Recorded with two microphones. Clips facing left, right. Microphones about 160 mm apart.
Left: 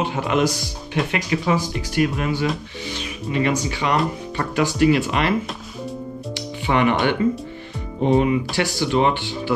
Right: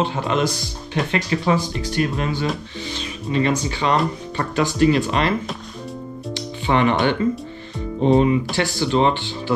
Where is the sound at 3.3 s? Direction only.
30° right (ahead or behind).